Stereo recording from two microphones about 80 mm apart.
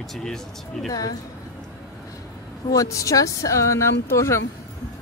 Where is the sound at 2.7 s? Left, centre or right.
Left.